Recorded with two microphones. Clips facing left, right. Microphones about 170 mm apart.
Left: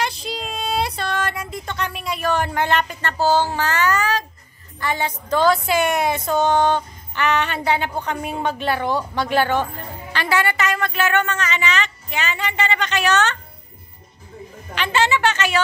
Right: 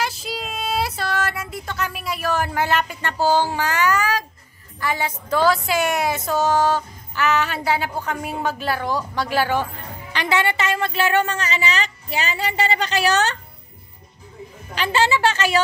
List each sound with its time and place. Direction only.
0.0 s child singing: 5° right (ahead or behind)
4.7 s speech: 5° right (ahead or behind)
10.1 s a woman's voice: 20° right (ahead or behind)
14.8 s a woman's voice: 35° right (ahead or behind)